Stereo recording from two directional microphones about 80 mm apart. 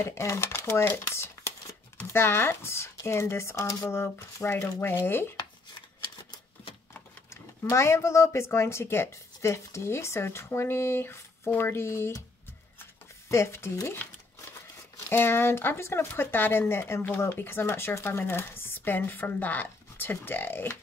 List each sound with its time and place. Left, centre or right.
0.0 s speech: left
6.9 s speech: left
13.3 s speech: left
15.0 s speech: left